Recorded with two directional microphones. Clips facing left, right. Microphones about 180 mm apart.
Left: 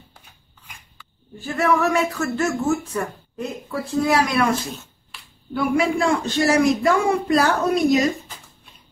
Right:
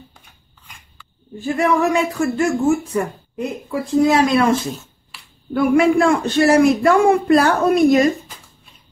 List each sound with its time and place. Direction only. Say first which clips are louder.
1.4 s speech: right 3 dB; 20° right (ahead or behind)
5.5 s a man's voice: right 6 dB; 55° right (ahead or behind)